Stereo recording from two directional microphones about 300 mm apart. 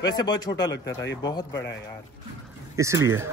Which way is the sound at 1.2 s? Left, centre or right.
Centre.